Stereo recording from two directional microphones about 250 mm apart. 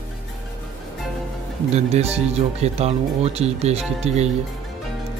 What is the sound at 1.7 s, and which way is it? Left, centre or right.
Speech, right.